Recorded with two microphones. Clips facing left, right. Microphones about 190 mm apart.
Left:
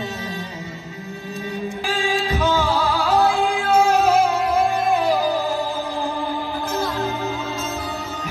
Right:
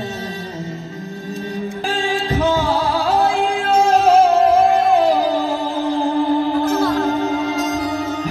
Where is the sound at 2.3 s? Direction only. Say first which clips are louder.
Right 4 dB; 35° right (ahead or behind).